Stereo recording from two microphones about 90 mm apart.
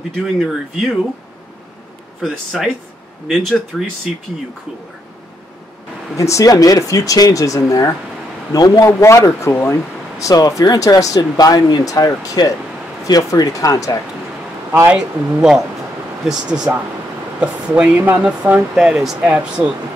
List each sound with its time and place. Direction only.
0.2 s speech: centre (ahead or behind)
3.3 s speech: centre (ahead or behind)
6.1 s speech: 35° left (ahead or behind)
8.8 s speech: 35° left (ahead or behind)
14.9 s speech: 5° right (ahead or behind)